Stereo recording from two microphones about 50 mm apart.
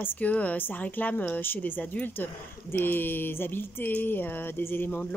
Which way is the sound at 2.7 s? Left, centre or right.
Left.